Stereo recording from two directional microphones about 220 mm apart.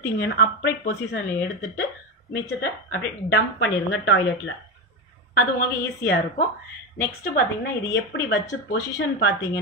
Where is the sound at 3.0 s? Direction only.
55° left (ahead or behind).